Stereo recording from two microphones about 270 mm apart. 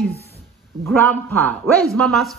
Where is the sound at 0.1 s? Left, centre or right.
Left.